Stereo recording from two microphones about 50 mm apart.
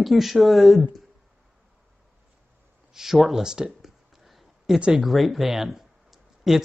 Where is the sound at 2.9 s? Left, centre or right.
Centre.